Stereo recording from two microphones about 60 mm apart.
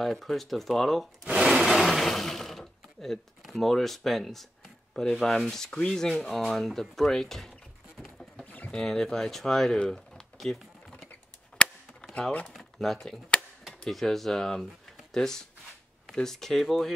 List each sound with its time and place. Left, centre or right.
0.0 s speech: centre
1.2 s speech: centre
1.6 s speech: centre
4.9 s sanding: centre
6.1 s speech: centre
8.0 s a sound: centre
8.5 s pigeon: left
8.7 s speech: centre
10.1 s typing: centre
11.5 s chop: centre
12.7 s sanding: centre
13.8 s speech: centre
15.1 s sanding: centre
16.1 s speech: centre